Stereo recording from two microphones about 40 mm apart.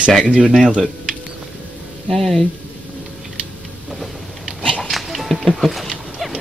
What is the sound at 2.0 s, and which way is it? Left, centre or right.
Speech, centre.